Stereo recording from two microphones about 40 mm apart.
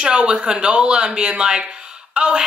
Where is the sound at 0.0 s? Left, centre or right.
Right.